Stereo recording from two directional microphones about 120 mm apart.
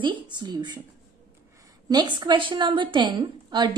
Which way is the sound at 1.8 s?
35° right (ahead or behind).